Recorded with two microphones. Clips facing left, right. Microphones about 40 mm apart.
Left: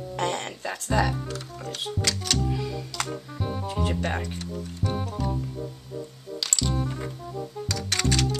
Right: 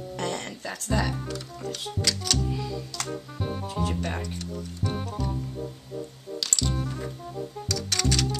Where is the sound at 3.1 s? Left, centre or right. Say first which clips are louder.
Even; centre.